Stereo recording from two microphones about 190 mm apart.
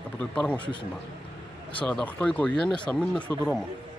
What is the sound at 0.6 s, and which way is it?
Speech, 25° left (ahead or behind).